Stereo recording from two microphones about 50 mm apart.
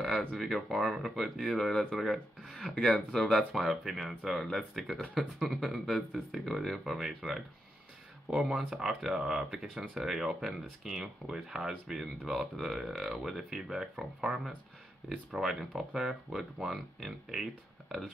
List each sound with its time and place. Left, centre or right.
0.4 s speech: centre
8.3 s speech: centre